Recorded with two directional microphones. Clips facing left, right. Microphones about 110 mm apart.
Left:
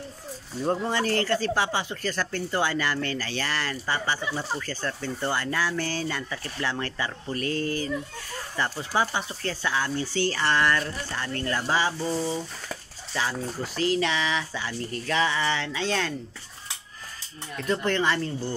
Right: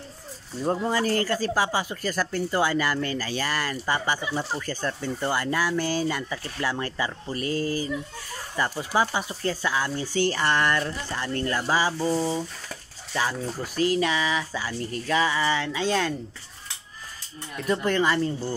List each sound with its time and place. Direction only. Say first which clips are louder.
0.7 s speech: right 1 dB; 5° right (ahead or behind)
14.0 s speech: right 1 dB; 10° right (ahead or behind)
17.6 s speech: right 2 dB; 10° right (ahead or behind)